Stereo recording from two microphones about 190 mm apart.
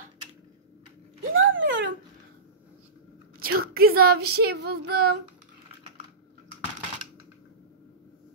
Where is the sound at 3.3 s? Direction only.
50° right (ahead or behind).